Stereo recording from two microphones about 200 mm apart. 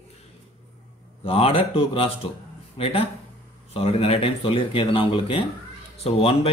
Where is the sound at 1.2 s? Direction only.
30° left (ahead or behind).